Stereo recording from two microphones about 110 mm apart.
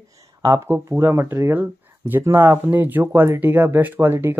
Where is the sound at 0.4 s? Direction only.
25° right (ahead or behind).